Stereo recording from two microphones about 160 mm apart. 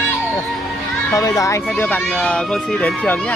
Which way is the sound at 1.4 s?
15° left (ahead or behind).